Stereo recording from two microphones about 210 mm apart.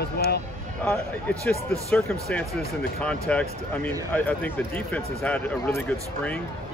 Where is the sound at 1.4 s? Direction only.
5° left (ahead or behind).